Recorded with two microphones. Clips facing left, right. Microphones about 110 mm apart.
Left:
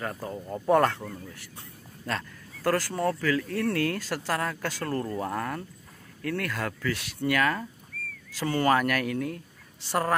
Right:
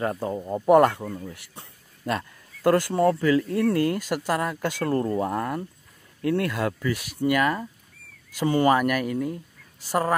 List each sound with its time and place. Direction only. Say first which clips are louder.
0.0 s speech: right 7 dB; 30° right (ahead or behind)
0.7 s speech: right 5 dB; 15° right (ahead or behind)